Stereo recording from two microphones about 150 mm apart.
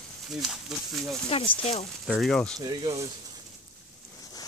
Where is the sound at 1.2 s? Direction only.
35° left (ahead or behind).